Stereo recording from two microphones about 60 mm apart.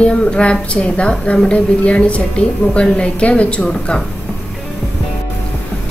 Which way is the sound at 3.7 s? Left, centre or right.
Centre.